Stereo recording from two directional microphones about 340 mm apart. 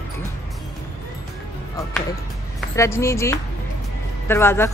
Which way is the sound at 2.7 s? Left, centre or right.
Centre.